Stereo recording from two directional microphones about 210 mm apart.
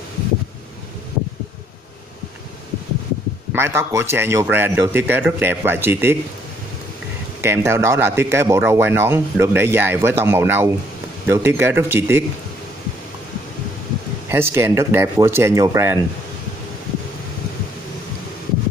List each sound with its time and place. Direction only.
3.5 s speech: 10° right (ahead or behind)
7.4 s speech: 10° right (ahead or behind)
14.3 s speech: 10° right (ahead or behind)